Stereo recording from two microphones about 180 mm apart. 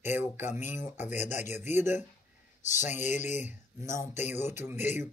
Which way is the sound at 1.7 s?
15° right (ahead or behind).